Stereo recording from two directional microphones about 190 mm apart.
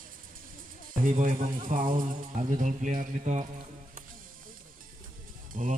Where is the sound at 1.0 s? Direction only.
45° right (ahead or behind).